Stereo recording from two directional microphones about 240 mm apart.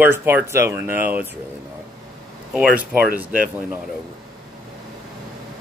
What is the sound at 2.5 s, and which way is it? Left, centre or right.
Speech, centre.